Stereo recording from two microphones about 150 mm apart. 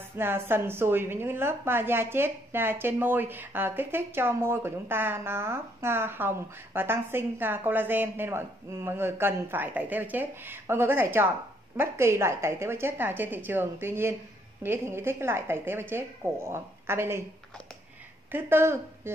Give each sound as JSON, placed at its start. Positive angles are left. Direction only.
{"t": 0.2, "sound": "a woman's voice", "side_deg": -15}
{"t": 18.3, "sound": "a woman's voice", "side_deg": -15}